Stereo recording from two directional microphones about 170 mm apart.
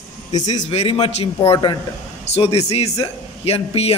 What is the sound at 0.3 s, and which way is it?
A man's voice, 45° left (ahead or behind).